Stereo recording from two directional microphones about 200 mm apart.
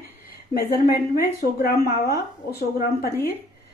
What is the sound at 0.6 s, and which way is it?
Speech, 50° left (ahead or behind).